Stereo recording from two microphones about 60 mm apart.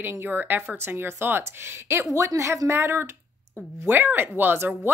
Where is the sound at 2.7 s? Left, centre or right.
Right.